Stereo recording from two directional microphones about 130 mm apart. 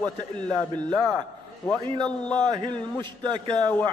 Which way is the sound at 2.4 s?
35° right (ahead or behind).